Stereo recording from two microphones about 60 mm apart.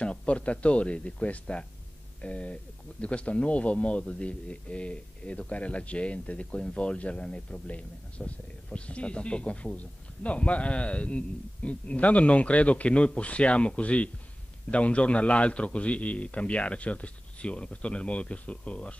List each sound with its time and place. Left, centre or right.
0.0 s speech: centre